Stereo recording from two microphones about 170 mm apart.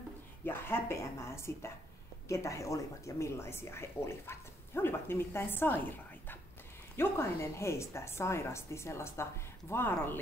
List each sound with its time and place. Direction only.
0.5 s speech: 15° left (ahead or behind)